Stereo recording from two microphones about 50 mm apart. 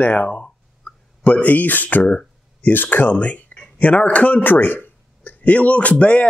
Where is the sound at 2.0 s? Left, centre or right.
Left.